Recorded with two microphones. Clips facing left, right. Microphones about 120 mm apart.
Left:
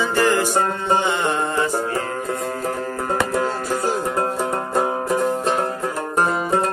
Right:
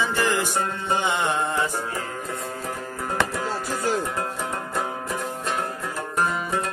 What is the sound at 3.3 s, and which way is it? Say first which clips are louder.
Music: left 6 dB; 40° left (ahead or behind).